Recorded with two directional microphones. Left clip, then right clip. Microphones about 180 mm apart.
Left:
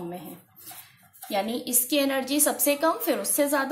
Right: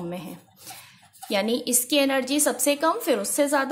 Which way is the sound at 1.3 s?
30° right (ahead or behind).